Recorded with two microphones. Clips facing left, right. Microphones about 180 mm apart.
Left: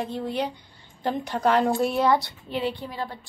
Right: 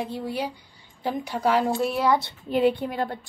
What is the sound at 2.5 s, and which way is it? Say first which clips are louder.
Speech: right 8 dB; 50° right (ahead or behind).